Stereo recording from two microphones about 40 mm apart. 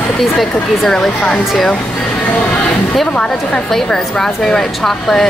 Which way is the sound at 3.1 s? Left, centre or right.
Left.